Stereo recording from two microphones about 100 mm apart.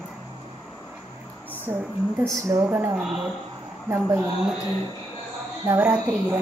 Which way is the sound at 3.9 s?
20° right (ahead or behind).